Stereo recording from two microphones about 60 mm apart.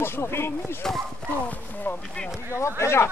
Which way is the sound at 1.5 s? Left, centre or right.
Left.